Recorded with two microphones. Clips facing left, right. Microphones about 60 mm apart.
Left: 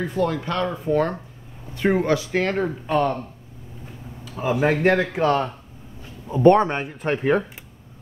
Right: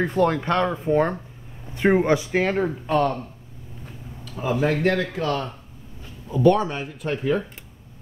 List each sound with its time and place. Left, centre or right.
0.0 s speech: right
0.7 s speech: right
2.5 s speech: centre
4.2 s a sound: centre
4.6 s a man's voice: left